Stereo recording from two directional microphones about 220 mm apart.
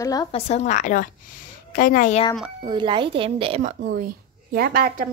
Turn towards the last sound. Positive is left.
turn(degrees=-40)  # may be behind; listen again after turning